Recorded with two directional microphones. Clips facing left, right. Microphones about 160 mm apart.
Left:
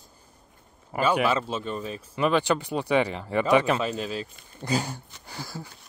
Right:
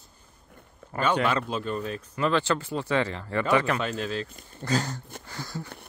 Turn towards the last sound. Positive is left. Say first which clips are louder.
# right 1 dB
turn(degrees=10)  # may be behind; listen again after turning